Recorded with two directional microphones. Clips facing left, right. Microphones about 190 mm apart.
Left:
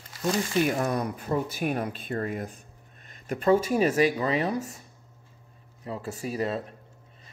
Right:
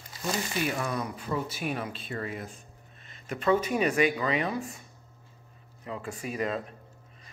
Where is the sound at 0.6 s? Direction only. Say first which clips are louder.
Left 6 dB; 45° left (ahead or behind).